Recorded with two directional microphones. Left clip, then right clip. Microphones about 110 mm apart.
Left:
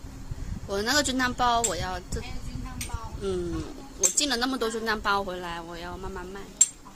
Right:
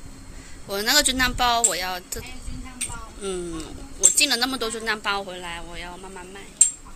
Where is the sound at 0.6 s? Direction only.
25° left (ahead or behind).